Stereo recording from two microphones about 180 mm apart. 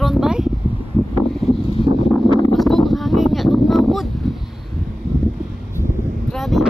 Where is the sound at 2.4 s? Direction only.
Centre (ahead or behind).